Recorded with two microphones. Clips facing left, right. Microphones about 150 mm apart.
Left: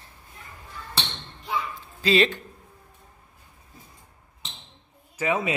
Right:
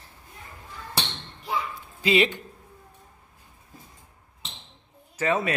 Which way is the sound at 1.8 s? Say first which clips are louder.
Left 1 dB; 15° right (ahead or behind).